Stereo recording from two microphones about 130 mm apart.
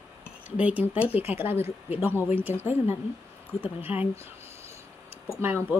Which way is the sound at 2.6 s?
55° left (ahead or behind).